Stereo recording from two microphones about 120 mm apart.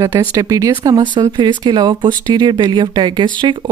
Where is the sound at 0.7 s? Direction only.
40° right (ahead or behind).